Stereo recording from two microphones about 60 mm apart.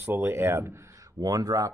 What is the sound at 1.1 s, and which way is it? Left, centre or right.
Speech, right.